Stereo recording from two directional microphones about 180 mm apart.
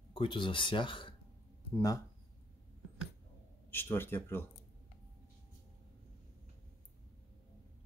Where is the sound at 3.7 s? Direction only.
10° left (ahead or behind).